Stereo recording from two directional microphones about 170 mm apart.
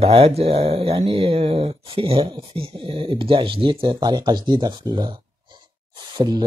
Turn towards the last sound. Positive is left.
turn(degrees=-25)  # may be behind; listen again after turning